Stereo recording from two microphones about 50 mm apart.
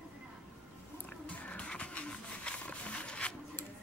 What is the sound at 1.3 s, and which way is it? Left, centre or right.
Music, left.